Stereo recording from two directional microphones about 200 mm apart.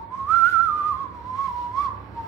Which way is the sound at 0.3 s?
15° left (ahead or behind).